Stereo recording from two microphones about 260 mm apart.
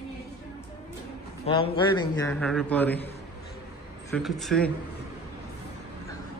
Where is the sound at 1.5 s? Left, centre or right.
Centre.